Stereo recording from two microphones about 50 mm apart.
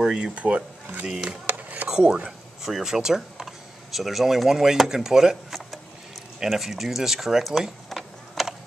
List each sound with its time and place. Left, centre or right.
0.0 s speech: centre
0.3 s speech: right
1.1 s speech: centre
1.4 s a sound: right
1.9 s speech: centre
7.6 s mechanisms: centre